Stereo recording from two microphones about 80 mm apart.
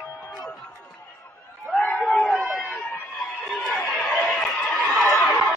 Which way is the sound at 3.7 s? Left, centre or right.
Centre.